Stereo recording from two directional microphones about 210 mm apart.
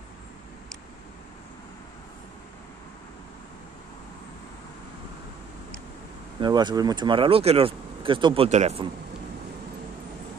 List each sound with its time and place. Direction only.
6.4 s speech: 20° right (ahead or behind)